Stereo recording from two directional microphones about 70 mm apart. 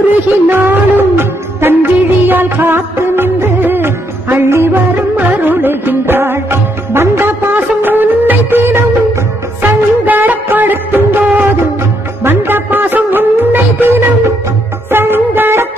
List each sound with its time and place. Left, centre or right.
0.5 s music of bollywood: right
5.1 s music: right
9.6 s music of bollywood: right
12.2 s music: right
14.9 s music of bollywood: right